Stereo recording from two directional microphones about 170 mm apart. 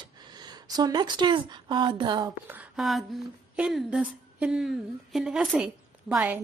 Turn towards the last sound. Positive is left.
turn(degrees=-10)  # may be behind; listen again after turning